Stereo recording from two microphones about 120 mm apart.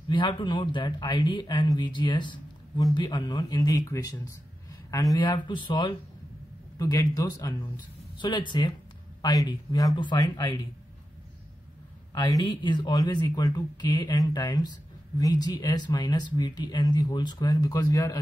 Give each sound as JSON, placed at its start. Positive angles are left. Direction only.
{"t": 0.1, "sound": "speech", "side_deg": 45}
{"t": 6.8, "sound": "speech", "side_deg": 30}
{"t": 12.1, "sound": "speech", "side_deg": 35}